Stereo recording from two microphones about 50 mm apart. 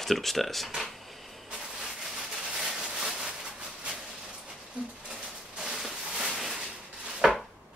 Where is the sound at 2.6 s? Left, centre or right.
Centre.